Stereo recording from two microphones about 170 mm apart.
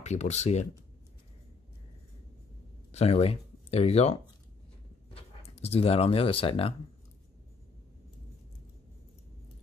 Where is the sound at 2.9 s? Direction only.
35° left (ahead or behind).